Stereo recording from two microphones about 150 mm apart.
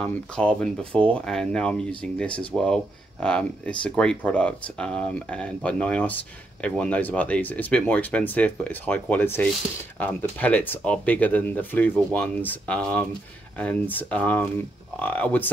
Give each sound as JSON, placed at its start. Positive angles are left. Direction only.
{"t": 0.0, "sound": "speech", "side_deg": 5}